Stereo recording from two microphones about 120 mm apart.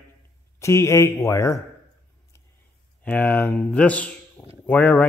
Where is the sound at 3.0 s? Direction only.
15° left (ahead or behind).